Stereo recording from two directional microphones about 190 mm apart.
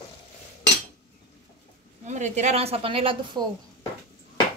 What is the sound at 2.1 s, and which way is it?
A woman's voice, 40° right (ahead or behind).